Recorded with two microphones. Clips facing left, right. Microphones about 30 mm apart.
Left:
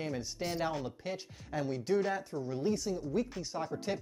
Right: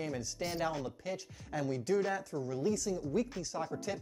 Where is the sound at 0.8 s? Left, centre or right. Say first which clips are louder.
Left 1 dB; left.